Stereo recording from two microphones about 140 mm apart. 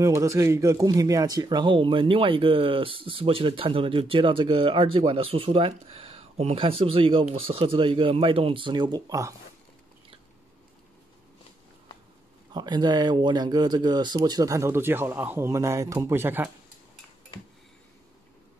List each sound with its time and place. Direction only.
0.0 s speech: 20° right (ahead or behind)
12.5 s speech: 30° right (ahead or behind)